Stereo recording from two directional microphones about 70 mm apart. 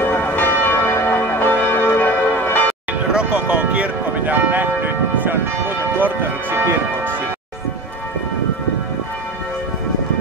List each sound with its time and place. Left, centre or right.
0.0 s church bell: left
2.9 s speech: centre; by 7.2 s right